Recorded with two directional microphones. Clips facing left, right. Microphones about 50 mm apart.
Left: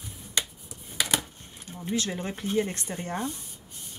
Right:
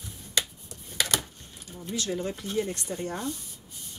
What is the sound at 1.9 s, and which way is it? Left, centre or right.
Speech, left.